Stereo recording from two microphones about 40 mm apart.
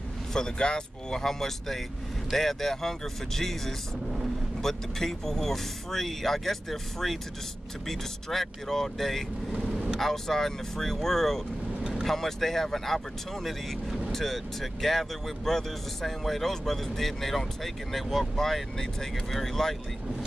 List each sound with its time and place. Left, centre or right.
0.3 s speech: centre